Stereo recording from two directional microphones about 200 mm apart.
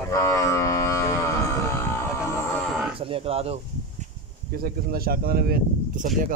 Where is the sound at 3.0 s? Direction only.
30° right (ahead or behind).